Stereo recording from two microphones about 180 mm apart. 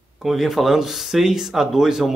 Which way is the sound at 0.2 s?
Centre (ahead or behind).